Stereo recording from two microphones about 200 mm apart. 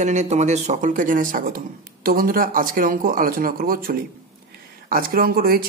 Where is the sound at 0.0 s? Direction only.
35° right (ahead or behind).